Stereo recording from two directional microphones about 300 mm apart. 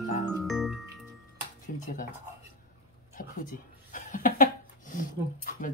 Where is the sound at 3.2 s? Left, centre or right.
Left.